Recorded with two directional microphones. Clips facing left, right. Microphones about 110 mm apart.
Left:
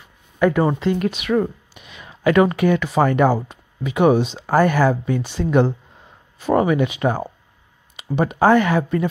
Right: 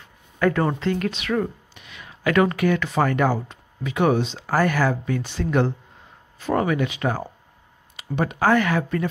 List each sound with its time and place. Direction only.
0.4 s speech: 15° left (ahead or behind)